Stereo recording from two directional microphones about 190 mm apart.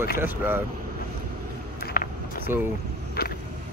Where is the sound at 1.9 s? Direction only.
55° left (ahead or behind).